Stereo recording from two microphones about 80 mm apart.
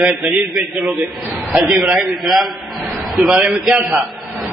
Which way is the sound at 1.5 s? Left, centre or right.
Centre.